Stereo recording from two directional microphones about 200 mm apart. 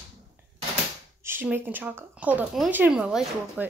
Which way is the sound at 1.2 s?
10° right (ahead or behind).